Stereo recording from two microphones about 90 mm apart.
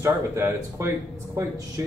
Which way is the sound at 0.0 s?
30° right (ahead or behind).